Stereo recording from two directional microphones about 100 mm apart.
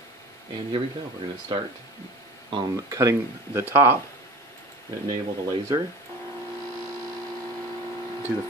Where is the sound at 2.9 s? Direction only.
30° right (ahead or behind).